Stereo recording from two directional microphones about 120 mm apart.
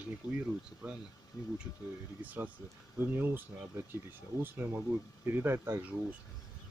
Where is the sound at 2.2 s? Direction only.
15° right (ahead or behind).